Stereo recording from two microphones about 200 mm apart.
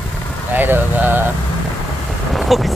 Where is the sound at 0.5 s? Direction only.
10° right (ahead or behind).